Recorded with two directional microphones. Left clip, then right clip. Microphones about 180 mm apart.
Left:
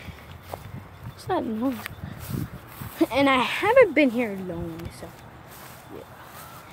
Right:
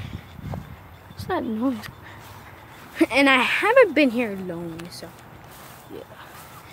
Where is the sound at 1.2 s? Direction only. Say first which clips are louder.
Right 1 dB; 10° right (ahead or behind).